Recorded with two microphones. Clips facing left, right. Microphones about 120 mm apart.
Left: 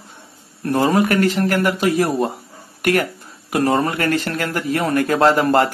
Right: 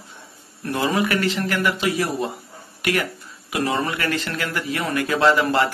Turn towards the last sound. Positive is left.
turn(degrees=45)  # may be behind; listen again after turning